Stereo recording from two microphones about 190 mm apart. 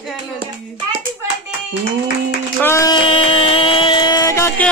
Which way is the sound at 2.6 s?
15° left (ahead or behind).